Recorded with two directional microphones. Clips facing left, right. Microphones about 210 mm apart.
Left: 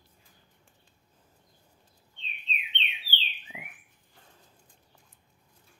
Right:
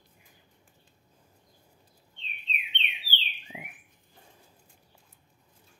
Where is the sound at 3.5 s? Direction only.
25° right (ahead or behind).